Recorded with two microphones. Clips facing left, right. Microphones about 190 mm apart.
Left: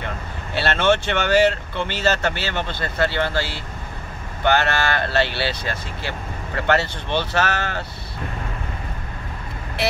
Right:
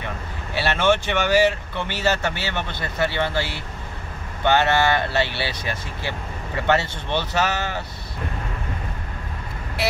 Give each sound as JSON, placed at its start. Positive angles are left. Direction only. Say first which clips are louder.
{"t": 0.6, "sound": "speech", "louder": "left 1 dB", "side_deg": -10}
{"t": 4.5, "sound": "speech", "louder": "right 1 dB", "side_deg": -20}